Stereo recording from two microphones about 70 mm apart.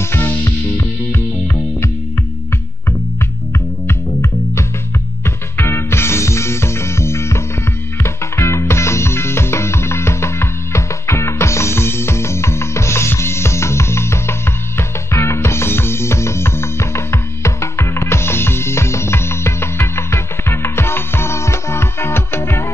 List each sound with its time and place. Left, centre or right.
0.0 s music: left
3.8 s music: left